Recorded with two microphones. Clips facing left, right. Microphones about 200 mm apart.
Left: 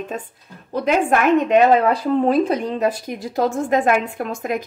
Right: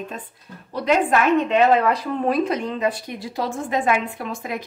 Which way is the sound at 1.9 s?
30° left (ahead or behind).